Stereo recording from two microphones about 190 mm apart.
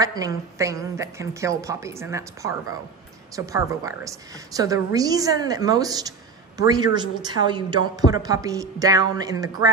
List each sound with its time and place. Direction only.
0.0 s a woman's voice: 20° right (ahead or behind)